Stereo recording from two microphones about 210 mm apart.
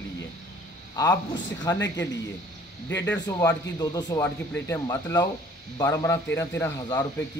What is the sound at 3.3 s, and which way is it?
Speech, 15° left (ahead or behind).